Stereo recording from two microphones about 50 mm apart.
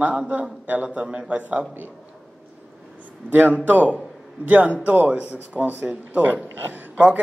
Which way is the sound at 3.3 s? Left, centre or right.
Right.